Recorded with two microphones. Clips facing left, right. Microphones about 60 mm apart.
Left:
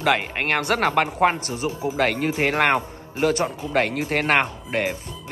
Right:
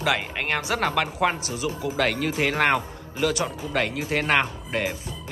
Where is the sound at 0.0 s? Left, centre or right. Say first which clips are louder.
Left 4 dB; left.